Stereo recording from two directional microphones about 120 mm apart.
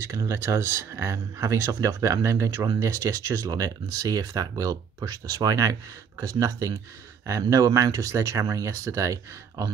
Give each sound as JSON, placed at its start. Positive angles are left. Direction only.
{"t": 0.0, "sound": "speech", "side_deg": -25}